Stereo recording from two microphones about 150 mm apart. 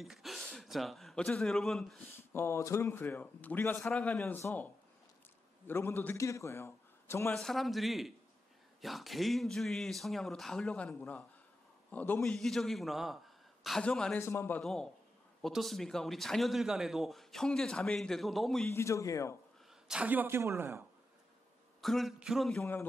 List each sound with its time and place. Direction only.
0.0 s a man's voice: centre (ahead or behind)
2.3 s a man's voice: 15° left (ahead or behind)
4.4 s a man's voice: 20° left (ahead or behind)
5.7 s a man's voice: 15° left (ahead or behind)
7.3 s a man's voice: centre (ahead or behind)
14.2 s a man's voice: 15° left (ahead or behind)
14.6 s a man's voice: centre (ahead or behind)
18.7 s a man's voice: 20° left (ahead or behind)
19.9 s speech: 10° right (ahead or behind)
21.8 s a man's voice: centre (ahead or behind)
22.6 s a man's voice: 15° left (ahead or behind)